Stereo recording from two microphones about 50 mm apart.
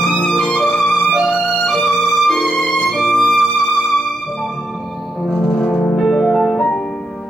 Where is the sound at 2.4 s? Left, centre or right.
Centre.